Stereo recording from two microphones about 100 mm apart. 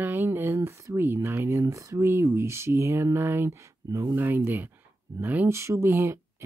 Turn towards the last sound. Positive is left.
turn(degrees=-25)  # may be behind; listen again after turning